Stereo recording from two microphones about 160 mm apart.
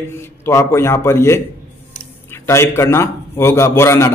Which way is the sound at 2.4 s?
15° left (ahead or behind).